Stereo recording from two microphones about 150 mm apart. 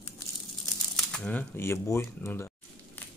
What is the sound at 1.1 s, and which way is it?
Speech, 10° left (ahead or behind).